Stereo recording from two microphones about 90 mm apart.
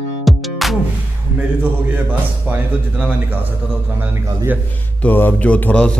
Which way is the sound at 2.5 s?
20° right (ahead or behind).